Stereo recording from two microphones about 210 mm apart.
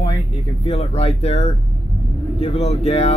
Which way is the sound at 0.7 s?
30° left (ahead or behind).